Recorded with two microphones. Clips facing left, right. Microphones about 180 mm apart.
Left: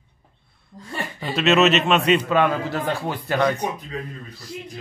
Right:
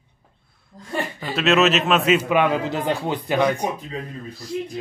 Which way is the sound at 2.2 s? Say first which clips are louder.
Right 1 dB; 15° right (ahead or behind).